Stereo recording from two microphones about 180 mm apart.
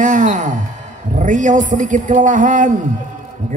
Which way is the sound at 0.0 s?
45° right (ahead or behind).